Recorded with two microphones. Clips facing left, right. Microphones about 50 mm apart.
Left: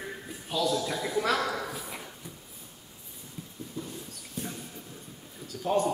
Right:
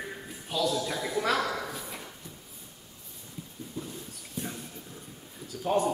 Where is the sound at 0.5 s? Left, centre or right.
Centre.